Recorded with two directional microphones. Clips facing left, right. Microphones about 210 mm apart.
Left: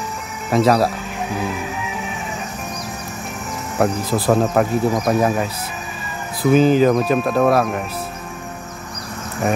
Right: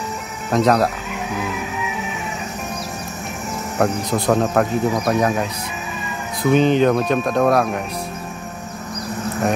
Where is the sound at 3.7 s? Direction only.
5° left (ahead or behind).